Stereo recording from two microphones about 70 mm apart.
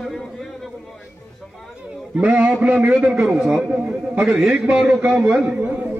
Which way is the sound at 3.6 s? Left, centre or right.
Centre.